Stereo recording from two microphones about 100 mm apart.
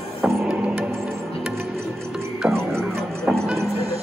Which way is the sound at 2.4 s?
Centre (ahead or behind).